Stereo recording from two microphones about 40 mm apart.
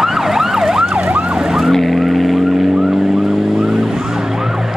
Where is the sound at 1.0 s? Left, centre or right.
Right.